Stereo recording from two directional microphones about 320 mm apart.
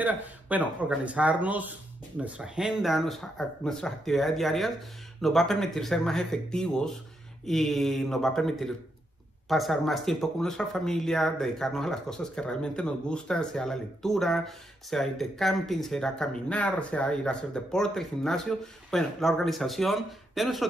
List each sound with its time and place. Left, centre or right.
0.0 s speech: centre